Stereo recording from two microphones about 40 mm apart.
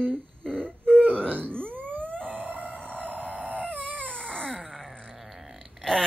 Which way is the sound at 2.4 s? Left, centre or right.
Right.